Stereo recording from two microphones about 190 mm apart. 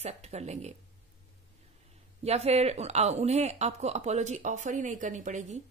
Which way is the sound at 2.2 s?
35° right (ahead or behind).